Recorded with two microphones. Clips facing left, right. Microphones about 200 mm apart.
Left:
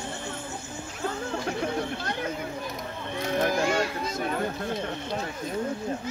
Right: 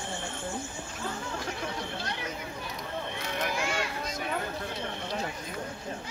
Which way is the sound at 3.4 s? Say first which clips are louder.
Left 7 dB; 40° left (ahead or behind).